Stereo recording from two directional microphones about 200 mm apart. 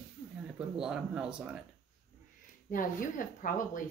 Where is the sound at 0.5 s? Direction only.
5° right (ahead or behind).